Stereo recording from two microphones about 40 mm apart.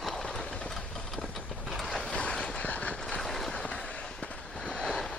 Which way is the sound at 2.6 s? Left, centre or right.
Left.